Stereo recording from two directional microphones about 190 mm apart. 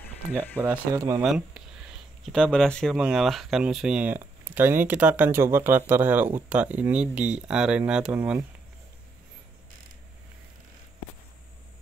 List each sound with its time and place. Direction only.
0.6 s speech: 15° right (ahead or behind)
1.2 s speech: centre (ahead or behind)